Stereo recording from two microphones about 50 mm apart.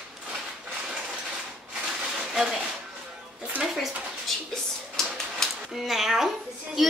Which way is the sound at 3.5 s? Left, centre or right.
Right.